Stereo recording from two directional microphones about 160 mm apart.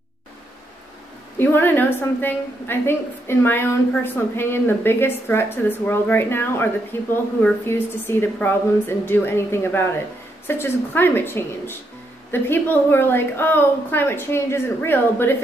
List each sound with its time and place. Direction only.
1.4 s a woman's voice: 15° left (ahead or behind)